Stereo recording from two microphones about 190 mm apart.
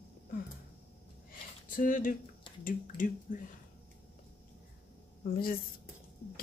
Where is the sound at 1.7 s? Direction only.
45° left (ahead or behind).